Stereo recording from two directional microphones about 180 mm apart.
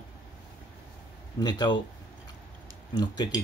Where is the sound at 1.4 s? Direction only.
25° left (ahead or behind).